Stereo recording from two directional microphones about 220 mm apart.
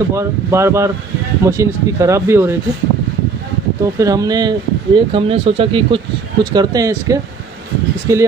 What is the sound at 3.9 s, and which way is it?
Speech, 15° right (ahead or behind).